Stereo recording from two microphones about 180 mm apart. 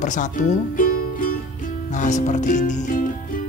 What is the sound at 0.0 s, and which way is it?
Speech, 45° left (ahead or behind).